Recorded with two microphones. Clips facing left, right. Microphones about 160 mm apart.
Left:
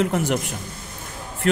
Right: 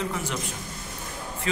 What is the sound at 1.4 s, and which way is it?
Speech, 65° left (ahead or behind).